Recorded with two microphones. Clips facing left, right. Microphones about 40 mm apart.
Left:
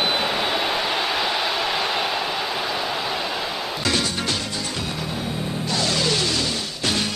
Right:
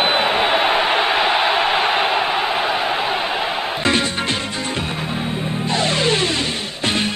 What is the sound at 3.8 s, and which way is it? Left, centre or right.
Music, right.